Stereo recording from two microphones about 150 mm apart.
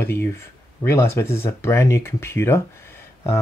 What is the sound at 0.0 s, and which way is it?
Speech, 15° left (ahead or behind).